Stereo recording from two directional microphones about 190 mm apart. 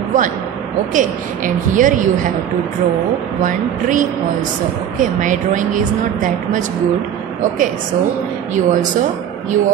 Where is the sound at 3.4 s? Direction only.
45° right (ahead or behind).